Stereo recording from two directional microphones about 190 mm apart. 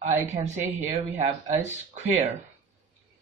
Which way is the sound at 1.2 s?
35° right (ahead or behind).